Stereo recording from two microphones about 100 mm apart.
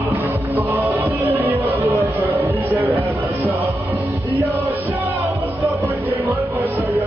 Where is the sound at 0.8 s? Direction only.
20° right (ahead or behind).